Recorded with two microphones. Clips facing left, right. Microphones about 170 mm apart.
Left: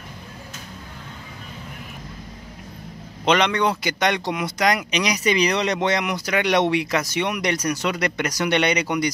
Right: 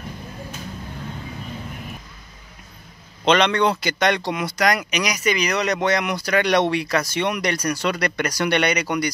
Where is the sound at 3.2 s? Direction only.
15° left (ahead or behind).